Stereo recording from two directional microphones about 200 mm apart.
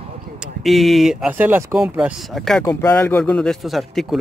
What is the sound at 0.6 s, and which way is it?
Speech, centre (ahead or behind).